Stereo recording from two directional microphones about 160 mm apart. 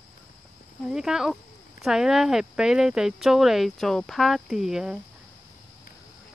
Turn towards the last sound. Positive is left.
turn(degrees=-5)  # may be behind; listen again after turning